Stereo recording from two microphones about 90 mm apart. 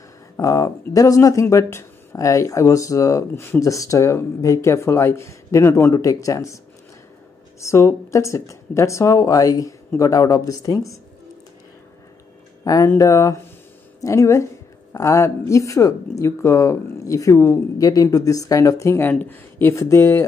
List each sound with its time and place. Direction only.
0.4 s speech: 40° left (ahead or behind)
7.6 s speech: 30° left (ahead or behind)
12.6 s speech: 35° left (ahead or behind)